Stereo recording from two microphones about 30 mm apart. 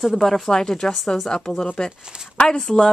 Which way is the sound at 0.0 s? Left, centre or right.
Centre.